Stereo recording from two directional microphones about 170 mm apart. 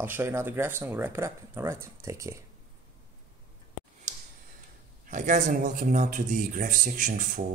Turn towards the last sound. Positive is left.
turn(degrees=-50)  # may be behind; listen again after turning